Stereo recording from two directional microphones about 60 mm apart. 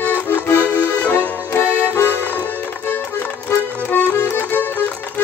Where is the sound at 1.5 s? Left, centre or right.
Left.